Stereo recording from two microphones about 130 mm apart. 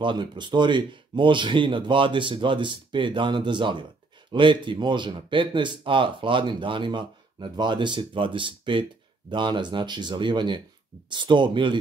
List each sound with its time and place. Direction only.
0.0 s speech: 35° right (ahead or behind)